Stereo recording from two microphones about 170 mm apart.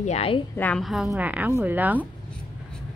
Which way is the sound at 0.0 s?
40° left (ahead or behind).